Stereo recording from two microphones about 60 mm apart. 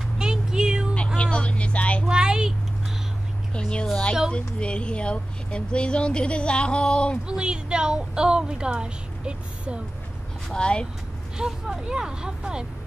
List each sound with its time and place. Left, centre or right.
0.2 s music: centre
0.9 s vehicle: centre
2.0 s a sound: centre
3.5 s a sound: centre
4.3 s speech: centre
7.2 s speech: centre
10.5 s speech: centre
11.3 s speech: centre